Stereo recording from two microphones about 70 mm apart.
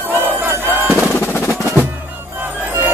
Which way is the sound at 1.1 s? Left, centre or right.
Left.